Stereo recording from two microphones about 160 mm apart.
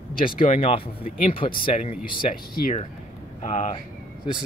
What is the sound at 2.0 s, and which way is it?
Speech, 65° left (ahead or behind).